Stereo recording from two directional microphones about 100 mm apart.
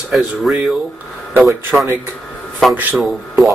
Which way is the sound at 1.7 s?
20° right (ahead or behind).